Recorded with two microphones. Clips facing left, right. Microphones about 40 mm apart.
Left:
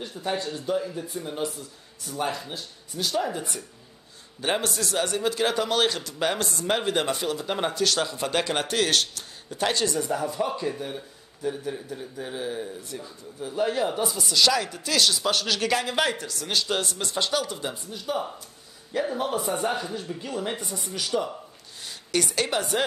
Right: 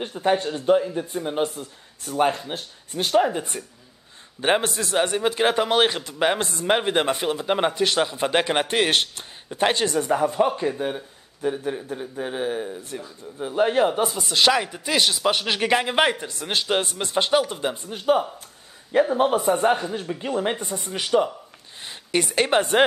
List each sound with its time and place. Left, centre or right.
0.0 s a man's voice: right